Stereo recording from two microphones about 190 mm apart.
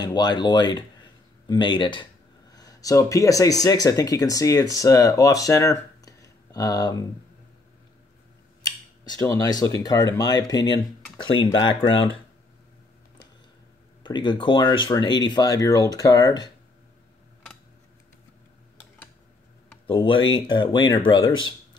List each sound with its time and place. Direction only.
0.0 s speech: 20° left (ahead or behind)
9.1 s speech: 15° left (ahead or behind)
14.0 s speech: 25° left (ahead or behind)
19.9 s speech: 25° left (ahead or behind)